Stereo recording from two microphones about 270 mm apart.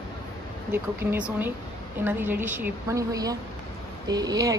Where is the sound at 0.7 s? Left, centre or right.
Centre.